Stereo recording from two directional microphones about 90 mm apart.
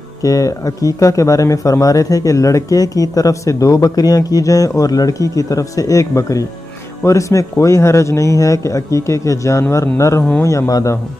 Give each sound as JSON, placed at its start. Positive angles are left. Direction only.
{"t": 0.2, "sound": "speech", "side_deg": 40}